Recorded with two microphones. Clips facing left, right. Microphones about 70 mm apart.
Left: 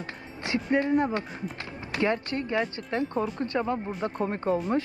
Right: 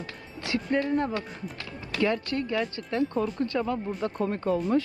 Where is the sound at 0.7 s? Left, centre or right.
Centre.